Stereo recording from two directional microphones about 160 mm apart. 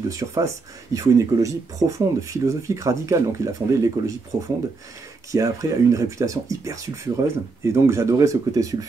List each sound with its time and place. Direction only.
0.1 s speech: 20° right (ahead or behind)
5.3 s speech: 20° right (ahead or behind)